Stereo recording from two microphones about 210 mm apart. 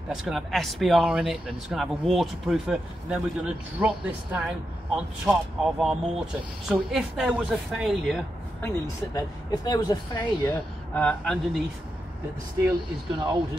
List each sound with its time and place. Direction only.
0.1 s speech: centre (ahead or behind)
8.6 s speech: 15° left (ahead or behind)
10.4 s speech: 10° left (ahead or behind)
13.1 s speech: 20° right (ahead or behind)